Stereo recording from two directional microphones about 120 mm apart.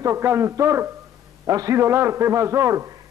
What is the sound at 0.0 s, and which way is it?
A man's voice, 20° right (ahead or behind).